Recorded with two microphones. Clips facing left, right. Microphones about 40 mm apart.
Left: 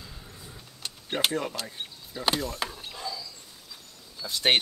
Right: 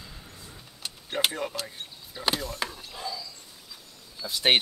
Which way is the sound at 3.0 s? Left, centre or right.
Centre.